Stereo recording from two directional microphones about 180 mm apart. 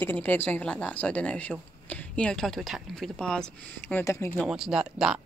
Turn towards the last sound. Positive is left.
turn(degrees=-5)  # may be behind; listen again after turning